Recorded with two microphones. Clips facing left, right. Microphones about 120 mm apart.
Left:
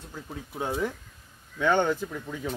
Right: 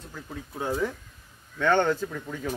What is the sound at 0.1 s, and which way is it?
Speech, 10° left (ahead or behind).